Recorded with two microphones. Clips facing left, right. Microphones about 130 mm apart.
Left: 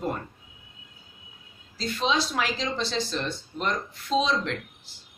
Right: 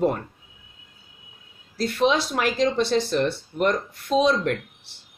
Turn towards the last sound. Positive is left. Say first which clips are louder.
# right 5 dB
turn(degrees=-55)  # may be behind; listen again after turning